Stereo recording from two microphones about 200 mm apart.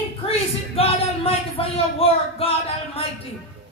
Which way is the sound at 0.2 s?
30° left (ahead or behind).